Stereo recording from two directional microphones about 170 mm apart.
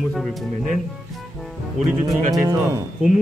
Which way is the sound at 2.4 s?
20° right (ahead or behind).